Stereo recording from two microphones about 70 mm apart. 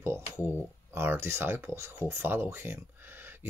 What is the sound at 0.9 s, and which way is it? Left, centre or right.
Speech, right.